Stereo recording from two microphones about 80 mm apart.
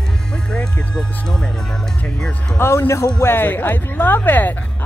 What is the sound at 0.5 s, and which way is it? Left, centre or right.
Speech, centre.